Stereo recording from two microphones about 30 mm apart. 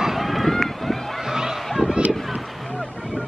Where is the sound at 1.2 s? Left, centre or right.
Centre.